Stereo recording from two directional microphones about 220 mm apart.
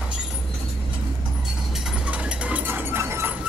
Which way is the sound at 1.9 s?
5° right (ahead or behind).